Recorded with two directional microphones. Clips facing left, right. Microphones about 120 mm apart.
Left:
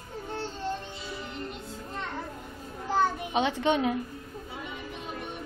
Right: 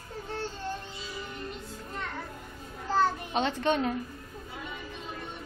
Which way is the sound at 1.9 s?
20° left (ahead or behind).